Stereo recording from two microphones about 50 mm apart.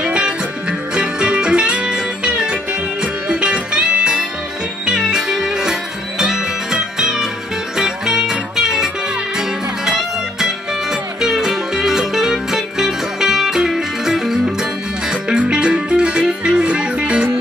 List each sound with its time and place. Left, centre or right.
0.0 s music: centre